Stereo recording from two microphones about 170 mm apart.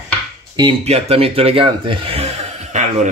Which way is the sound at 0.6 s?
35° right (ahead or behind).